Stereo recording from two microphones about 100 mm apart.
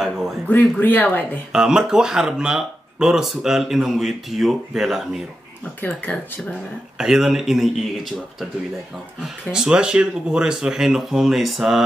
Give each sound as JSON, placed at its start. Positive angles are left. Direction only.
{"t": 0.5, "sound": "speech", "side_deg": 20}
{"t": 1.5, "sound": "speech", "side_deg": -5}
{"t": 5.8, "sound": "speech", "side_deg": 15}
{"t": 7.0, "sound": "speech", "side_deg": -5}
{"t": 9.5, "sound": "speech", "side_deg": -10}